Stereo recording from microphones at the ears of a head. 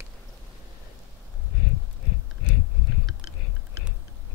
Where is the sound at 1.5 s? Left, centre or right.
Left.